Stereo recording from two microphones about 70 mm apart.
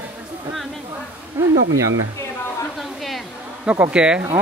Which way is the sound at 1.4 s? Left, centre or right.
Right.